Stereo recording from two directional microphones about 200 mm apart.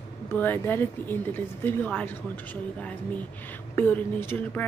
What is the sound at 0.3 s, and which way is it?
Speech, 10° left (ahead or behind).